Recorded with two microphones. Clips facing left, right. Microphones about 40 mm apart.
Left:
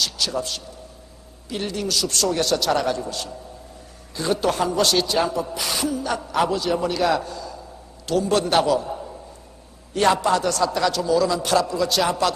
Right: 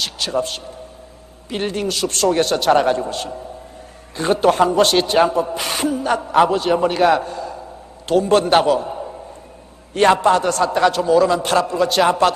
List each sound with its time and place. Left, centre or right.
0.0 s a sound: right
1.5 s speech: right
9.9 s speech: right